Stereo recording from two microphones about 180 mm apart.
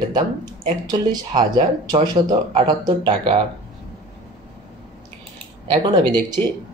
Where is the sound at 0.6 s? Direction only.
25° right (ahead or behind).